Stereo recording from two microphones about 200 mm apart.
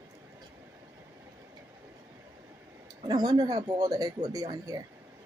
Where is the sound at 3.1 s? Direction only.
20° right (ahead or behind).